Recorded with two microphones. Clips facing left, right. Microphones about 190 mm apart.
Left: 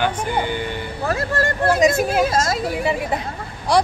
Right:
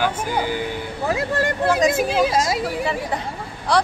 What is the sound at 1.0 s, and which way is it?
Speech, 15° right (ahead or behind).